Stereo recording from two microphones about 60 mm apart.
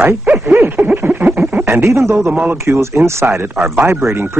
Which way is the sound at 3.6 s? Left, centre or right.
Right.